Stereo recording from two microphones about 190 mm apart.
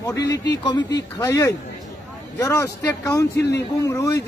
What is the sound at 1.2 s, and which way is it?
A man's voice, 15° left (ahead or behind).